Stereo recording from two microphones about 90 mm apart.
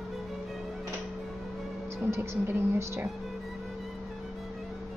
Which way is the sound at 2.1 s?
30° right (ahead or behind).